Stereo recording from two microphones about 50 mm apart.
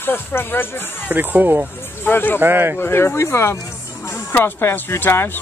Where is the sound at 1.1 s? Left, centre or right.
Right.